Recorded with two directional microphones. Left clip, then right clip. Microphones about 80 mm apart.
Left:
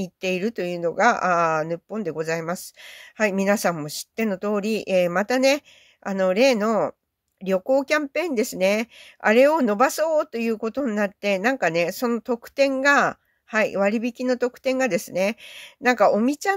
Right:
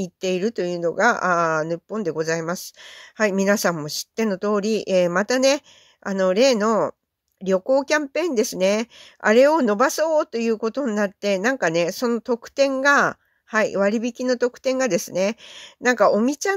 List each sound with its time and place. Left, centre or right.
0.0 s speech: right